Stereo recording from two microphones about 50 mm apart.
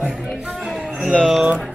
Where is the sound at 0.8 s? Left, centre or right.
Centre.